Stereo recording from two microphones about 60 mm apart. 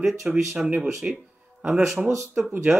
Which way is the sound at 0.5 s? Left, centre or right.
Centre.